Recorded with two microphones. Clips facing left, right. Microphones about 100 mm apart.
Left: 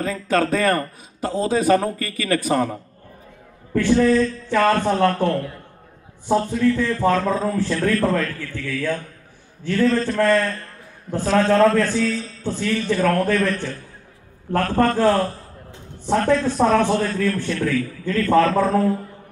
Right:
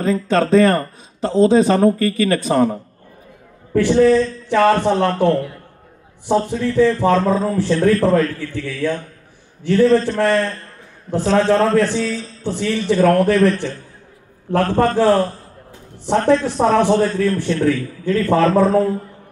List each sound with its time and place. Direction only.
0.0 s a man's voice: 25° right (ahead or behind)
6.5 s a man's voice: 25° right (ahead or behind)